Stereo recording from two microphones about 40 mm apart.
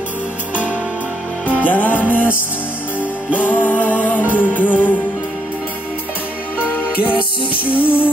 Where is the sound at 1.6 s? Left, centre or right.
Left.